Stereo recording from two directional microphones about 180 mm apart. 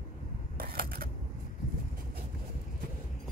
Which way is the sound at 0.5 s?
55° right (ahead or behind).